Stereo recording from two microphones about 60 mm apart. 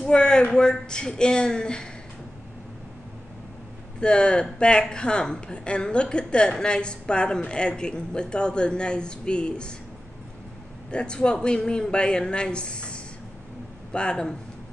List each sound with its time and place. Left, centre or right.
0.0 s speech: centre
4.0 s speech: centre
10.9 s speech: centre